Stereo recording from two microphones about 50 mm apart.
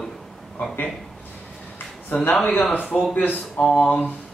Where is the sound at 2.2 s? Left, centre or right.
Left.